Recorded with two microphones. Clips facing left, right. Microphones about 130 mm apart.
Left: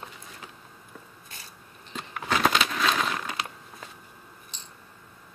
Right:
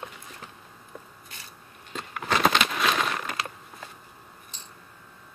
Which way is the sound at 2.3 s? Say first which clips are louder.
Right 1 dB; centre (ahead or behind).